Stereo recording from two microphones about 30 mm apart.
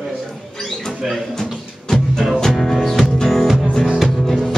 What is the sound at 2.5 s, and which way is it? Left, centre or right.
Music, centre.